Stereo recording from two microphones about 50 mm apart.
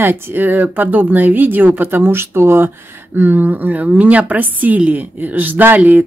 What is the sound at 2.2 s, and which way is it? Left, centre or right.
Speech, right.